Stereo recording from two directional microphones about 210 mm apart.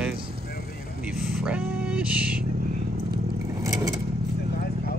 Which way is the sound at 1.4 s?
5° right (ahead or behind).